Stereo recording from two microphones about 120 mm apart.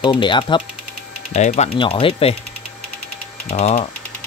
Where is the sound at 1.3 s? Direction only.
65° left (ahead or behind).